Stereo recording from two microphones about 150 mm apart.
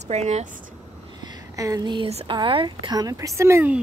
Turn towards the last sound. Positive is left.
turn(degrees=-15)  # may be behind; listen again after turning